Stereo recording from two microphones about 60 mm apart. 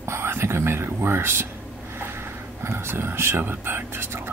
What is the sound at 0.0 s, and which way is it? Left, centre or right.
Whispering, right.